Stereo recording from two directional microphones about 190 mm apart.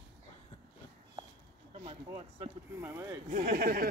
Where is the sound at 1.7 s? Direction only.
35° right (ahead or behind).